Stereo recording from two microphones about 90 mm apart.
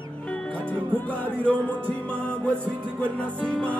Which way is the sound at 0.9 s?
15° left (ahead or behind).